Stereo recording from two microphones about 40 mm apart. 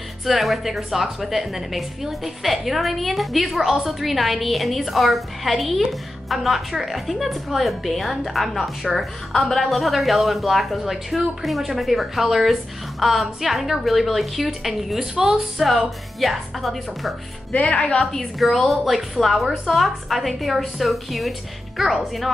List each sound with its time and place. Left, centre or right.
0.2 s a woman's voice: centre
7.1 s a woman's voice: centre
15.5 s a woman's voice: centre
17.6 s a woman's voice: left
18.0 s a woman's voice: centre